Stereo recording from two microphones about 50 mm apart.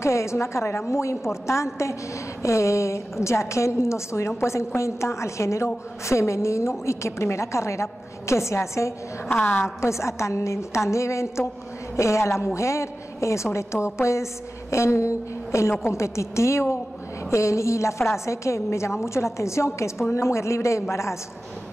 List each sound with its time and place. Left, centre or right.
0.0 s a woman's voice: left
2.4 s a woman's voice: left
9.3 s a woman's voice: left
9.8 s a woman's voice: left
12.5 s a woman's voice: left
17.3 s a woman's voice: left